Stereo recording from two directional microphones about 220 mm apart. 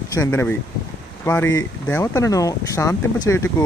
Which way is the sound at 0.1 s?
10° left (ahead or behind).